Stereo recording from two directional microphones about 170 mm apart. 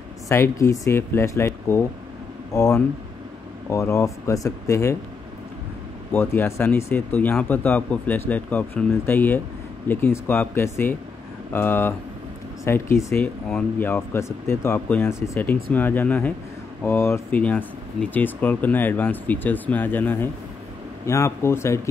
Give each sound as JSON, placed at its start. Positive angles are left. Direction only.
{"t": 0.3, "sound": "speech", "side_deg": 15}
{"t": 6.1, "sound": "speech", "side_deg": 15}